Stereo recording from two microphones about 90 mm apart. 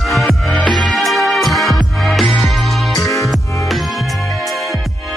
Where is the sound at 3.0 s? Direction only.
35° left (ahead or behind).